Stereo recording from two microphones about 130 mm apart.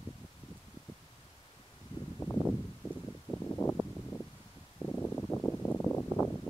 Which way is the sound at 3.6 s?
25° left (ahead or behind).